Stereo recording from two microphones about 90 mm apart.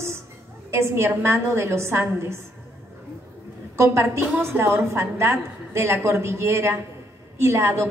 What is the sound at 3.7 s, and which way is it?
A woman's voice, 30° right (ahead or behind).